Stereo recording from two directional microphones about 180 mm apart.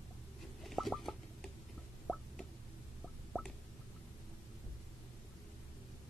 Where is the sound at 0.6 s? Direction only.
Centre (ahead or behind).